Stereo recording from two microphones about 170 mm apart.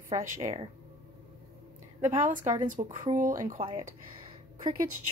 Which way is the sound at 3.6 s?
25° right (ahead or behind).